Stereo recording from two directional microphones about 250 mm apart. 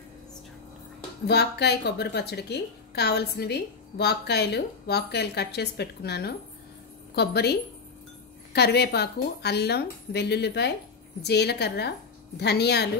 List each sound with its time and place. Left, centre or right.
1.2 s a woman's voice: left
8.5 s a woman's voice: left